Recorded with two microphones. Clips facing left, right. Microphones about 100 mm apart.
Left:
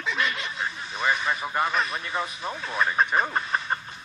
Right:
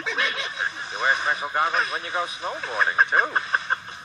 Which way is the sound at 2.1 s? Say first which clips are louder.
Right 2 dB; 20° right (ahead or behind).